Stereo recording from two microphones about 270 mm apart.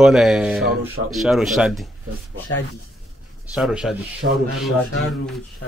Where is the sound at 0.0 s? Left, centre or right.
Centre.